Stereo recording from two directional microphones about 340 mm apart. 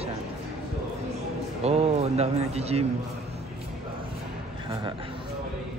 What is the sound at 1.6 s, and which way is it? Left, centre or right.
A man's voice, centre.